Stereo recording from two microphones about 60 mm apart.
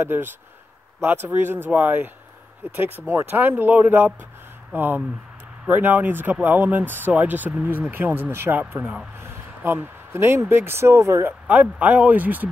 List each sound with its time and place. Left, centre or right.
0.0 s speech: right
11.4 s speech: right